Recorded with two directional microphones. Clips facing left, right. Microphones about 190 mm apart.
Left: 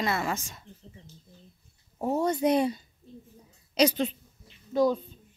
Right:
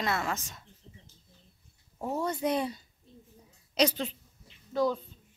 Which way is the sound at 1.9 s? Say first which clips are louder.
Left 5 dB; 25° left (ahead or behind).